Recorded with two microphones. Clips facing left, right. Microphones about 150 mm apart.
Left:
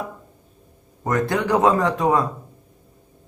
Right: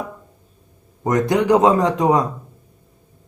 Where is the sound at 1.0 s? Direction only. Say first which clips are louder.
Right 5 dB; 15° right (ahead or behind).